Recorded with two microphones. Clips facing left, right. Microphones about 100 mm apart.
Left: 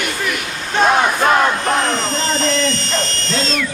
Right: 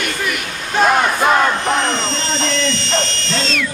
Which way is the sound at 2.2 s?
40° left (ahead or behind).